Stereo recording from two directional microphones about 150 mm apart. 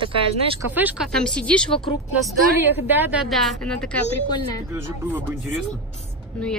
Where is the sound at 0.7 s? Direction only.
10° right (ahead or behind).